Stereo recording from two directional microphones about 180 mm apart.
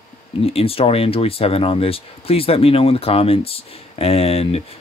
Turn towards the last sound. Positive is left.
turn(degrees=35)  # may be behind; listen again after turning